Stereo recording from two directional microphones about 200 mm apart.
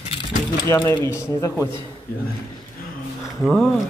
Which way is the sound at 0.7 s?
15° left (ahead or behind).